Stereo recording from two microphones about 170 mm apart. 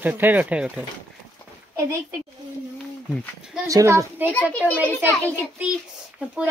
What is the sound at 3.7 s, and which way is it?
Speech, 20° right (ahead or behind).